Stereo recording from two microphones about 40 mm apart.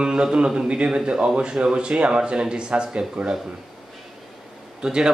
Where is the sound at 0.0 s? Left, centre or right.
Right.